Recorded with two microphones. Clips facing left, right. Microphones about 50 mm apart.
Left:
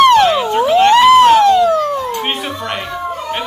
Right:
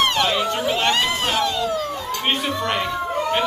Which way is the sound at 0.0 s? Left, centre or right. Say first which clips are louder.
Left 11 dB; left.